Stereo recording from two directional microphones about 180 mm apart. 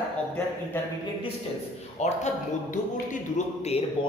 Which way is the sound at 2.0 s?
40° left (ahead or behind).